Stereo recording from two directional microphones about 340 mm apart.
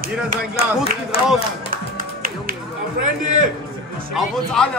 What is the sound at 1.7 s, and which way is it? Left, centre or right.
Music, right.